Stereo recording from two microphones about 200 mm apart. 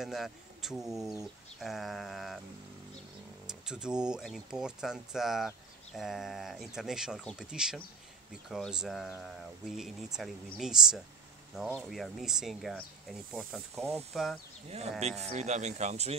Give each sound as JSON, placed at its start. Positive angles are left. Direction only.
{"t": 0.0, "sound": "speech", "side_deg": 0}
{"t": 3.4, "sound": "speech", "side_deg": -5}
{"t": 15.0, "sound": "speech", "side_deg": -35}